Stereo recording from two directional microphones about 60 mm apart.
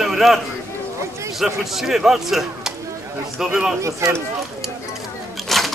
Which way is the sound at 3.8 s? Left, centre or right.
Right.